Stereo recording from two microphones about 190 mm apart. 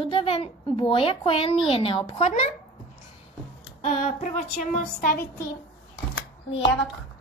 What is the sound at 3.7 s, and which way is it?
Speech, 40° left (ahead or behind).